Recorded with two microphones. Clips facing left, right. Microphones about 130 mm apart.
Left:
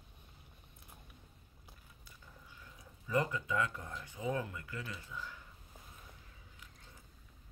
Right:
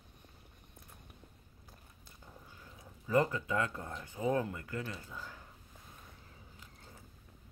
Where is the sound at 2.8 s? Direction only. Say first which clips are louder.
Right 4 dB; 30° right (ahead or behind).